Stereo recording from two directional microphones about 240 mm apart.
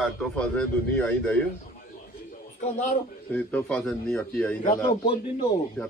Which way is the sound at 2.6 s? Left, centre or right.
Left.